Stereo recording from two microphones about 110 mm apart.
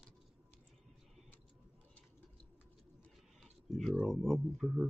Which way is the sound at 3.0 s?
5° left (ahead or behind).